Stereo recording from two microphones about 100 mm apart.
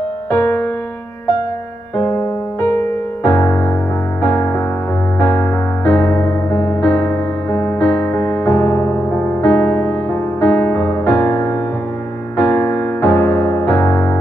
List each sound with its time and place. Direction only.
0.3 s music: 25° left (ahead or behind)
2.0 s music: 25° left (ahead or behind)
12.4 s electric piano: 25° left (ahead or behind)